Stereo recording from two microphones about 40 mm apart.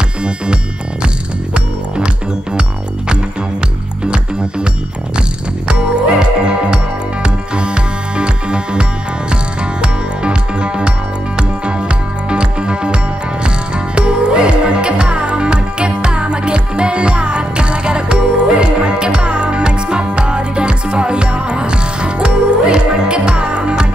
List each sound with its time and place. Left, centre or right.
1.0 s music: right
4.0 s music: right
5.7 s music: right
12.3 s music: right